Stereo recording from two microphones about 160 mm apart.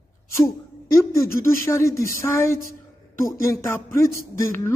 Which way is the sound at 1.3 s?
20° left (ahead or behind).